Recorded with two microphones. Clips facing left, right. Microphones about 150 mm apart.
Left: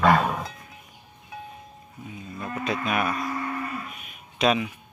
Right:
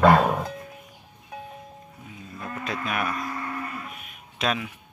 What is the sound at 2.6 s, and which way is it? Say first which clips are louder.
Speech: left 3 dB; centre (ahead or behind).